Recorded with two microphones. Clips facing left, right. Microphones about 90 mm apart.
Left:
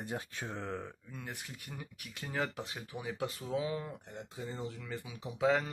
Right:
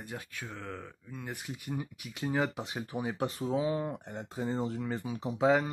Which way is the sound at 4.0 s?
50° right (ahead or behind).